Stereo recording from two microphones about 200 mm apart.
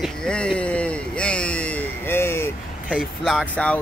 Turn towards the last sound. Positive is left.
turn(degrees=0)  # may be behind; listen again after turning